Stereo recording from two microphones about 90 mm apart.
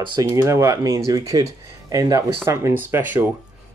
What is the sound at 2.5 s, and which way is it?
Speech, 30° right (ahead or behind).